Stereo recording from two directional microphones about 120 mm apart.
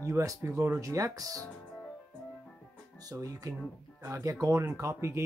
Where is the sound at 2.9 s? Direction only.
30° right (ahead or behind).